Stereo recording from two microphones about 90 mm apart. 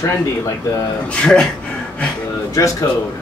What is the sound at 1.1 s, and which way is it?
Speech, 10° left (ahead or behind).